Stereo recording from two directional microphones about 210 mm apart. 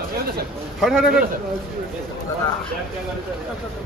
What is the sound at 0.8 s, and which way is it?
Speech, centre (ahead or behind).